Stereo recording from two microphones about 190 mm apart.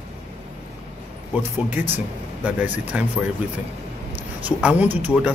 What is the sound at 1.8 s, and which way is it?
Speech, 10° right (ahead or behind).